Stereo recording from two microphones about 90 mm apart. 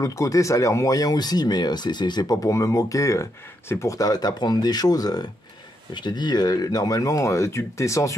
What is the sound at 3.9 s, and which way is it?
Speech, 45° left (ahead or behind).